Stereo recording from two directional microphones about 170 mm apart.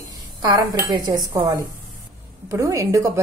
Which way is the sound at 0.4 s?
20° right (ahead or behind).